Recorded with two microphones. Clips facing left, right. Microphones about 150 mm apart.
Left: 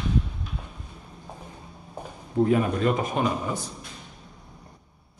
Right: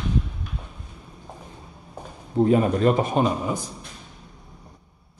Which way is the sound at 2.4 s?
30° right (ahead or behind).